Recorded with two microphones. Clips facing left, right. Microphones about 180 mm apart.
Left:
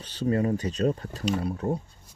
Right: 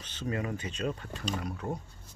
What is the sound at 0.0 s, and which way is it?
Speech, 35° left (ahead or behind).